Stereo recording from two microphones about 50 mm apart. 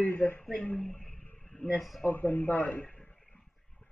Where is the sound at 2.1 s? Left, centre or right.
Left.